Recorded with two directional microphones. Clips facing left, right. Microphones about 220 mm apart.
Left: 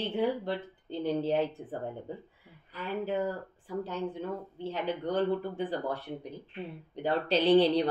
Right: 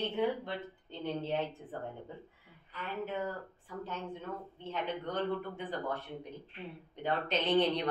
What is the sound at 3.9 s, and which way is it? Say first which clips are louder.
Speech: left 3 dB; 35° left (ahead or behind).